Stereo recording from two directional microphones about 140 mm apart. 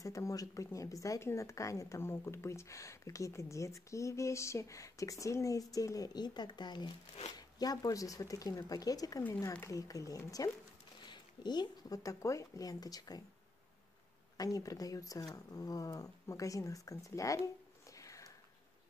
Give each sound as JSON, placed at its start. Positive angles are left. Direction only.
{"t": 0.0, "sound": "speech", "side_deg": 25}
{"t": 14.3, "sound": "speech", "side_deg": 25}
{"t": 17.9, "sound": "a sound", "side_deg": 25}